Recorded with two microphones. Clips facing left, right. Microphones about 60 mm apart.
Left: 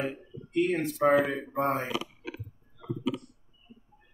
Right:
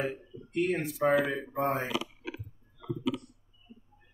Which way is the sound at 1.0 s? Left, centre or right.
Left.